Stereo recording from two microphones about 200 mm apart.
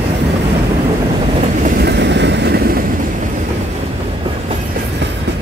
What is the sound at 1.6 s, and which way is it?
Vehicle, 55° right (ahead or behind).